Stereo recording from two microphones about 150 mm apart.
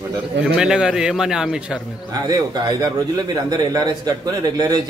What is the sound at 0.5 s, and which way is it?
A man's voice, 5° right (ahead or behind).